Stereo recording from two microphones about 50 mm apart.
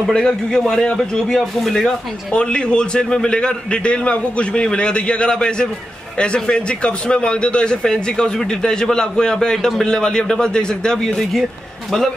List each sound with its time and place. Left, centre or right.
0.1 s a man's voice: centre
2.3 s a man's voice: centre